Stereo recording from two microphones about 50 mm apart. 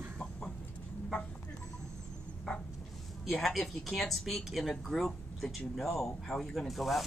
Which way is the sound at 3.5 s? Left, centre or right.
Centre.